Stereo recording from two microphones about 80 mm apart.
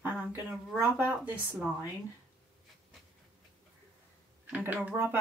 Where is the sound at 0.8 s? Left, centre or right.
Right.